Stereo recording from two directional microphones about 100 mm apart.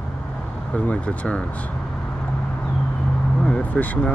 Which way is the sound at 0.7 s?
15° left (ahead or behind).